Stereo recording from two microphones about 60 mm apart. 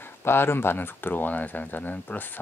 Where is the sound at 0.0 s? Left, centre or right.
Left.